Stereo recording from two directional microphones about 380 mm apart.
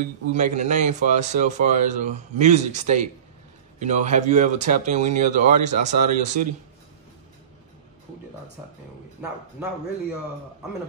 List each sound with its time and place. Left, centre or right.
0.0 s a man's voice: centre